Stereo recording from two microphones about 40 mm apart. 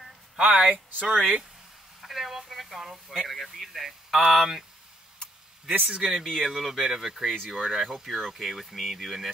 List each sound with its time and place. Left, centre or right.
0.4 s speech: right
2.0 s speech: centre
5.9 s speech: right
6.1 s speech: centre